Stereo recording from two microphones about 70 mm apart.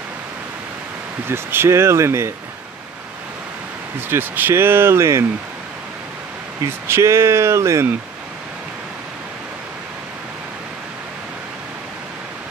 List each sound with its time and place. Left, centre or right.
1.2 s speech: right
4.1 s speech: right
6.9 s speech: right